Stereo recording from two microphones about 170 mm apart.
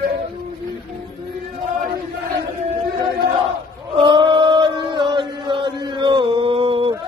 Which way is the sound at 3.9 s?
30° right (ahead or behind).